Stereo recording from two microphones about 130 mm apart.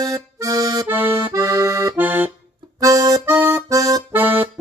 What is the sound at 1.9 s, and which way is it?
Accordion, 15° right (ahead or behind).